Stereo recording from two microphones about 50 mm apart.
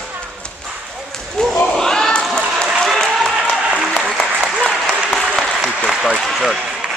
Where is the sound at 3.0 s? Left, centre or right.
Centre.